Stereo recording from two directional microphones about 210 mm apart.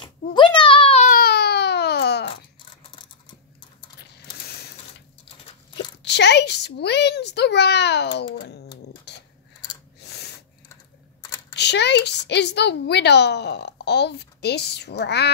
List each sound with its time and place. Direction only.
0.0 s baby cry: 25° left (ahead or behind); by 2.3 s 55° left (ahead or behind)
2.8 s a sound: 25° left (ahead or behind)
4.5 s sewing machine: 50° left (ahead or behind)
6.0 s a woman's voice: 55° left (ahead or behind)
8.4 s cat: 50° left (ahead or behind)
9.1 s a sound: 55° left (ahead or behind)
11.5 s a woman's voice: 55° left (ahead or behind)